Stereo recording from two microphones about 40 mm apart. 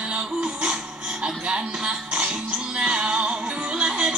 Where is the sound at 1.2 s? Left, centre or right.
Right.